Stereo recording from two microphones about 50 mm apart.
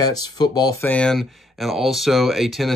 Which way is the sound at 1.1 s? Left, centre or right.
Centre.